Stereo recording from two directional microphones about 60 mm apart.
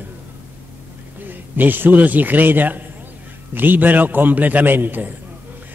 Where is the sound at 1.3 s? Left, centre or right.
Right.